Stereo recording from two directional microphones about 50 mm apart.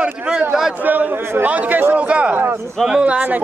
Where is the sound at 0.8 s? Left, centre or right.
Right.